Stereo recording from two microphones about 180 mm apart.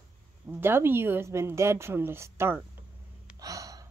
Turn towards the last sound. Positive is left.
turn(degrees=-20)  # may be behind; listen again after turning